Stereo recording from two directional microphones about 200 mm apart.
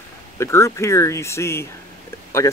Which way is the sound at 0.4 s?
15° left (ahead or behind).